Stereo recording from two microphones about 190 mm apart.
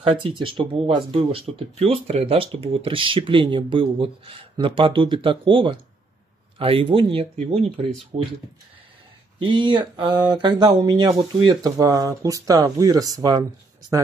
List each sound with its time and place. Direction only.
0.0 s speech: 25° right (ahead or behind)
9.4 s speech: 25° right (ahead or behind)